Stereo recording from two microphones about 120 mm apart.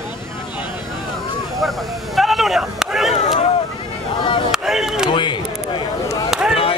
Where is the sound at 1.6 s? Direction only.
Centre (ahead or behind).